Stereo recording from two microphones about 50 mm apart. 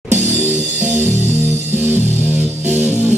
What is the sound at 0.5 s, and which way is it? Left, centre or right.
Music, right.